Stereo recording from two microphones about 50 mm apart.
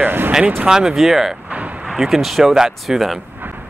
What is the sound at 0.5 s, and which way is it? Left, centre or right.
Speech, centre.